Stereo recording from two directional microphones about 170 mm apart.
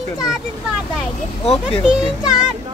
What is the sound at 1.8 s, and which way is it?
Speech, 5° right (ahead or behind).